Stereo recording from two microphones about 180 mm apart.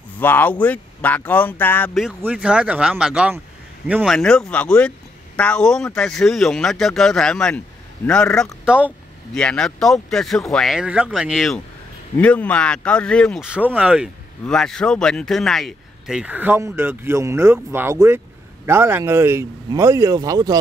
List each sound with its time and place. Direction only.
0.2 s speech: 10° left (ahead or behind)
2.0 s a man's voice: 5° right (ahead or behind)
9.4 s speech: 5° left (ahead or behind); by 20.5 s 20° right (ahead or behind)